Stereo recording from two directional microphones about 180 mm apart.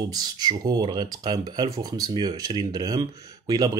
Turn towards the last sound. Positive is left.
turn(degrees=-20)  # may be behind; listen again after turning